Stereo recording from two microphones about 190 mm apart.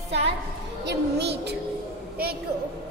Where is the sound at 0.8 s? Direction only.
65° right (ahead or behind).